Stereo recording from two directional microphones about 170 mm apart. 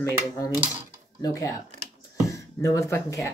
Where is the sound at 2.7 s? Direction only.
20° left (ahead or behind).